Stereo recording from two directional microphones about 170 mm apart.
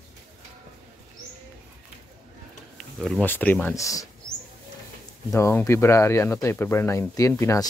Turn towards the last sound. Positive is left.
turn(degrees=15)  # may be behind; listen again after turning